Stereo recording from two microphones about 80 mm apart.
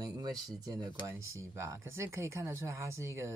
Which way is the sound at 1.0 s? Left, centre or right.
Right.